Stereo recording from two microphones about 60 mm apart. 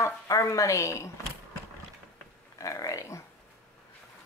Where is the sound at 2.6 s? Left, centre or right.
Left.